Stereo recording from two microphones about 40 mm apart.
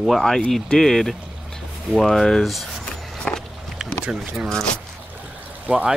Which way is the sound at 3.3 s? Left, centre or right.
Left.